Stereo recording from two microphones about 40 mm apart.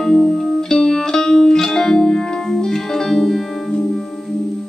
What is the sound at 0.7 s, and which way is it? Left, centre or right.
Music, centre.